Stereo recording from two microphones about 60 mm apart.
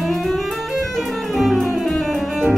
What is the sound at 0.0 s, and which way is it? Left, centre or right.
Music, centre.